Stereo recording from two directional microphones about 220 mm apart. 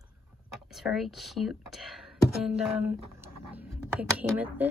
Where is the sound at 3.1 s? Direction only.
5° right (ahead or behind).